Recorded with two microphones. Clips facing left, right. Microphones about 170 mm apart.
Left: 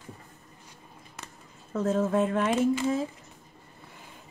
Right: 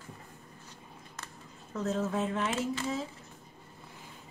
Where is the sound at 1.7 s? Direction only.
50° left (ahead or behind).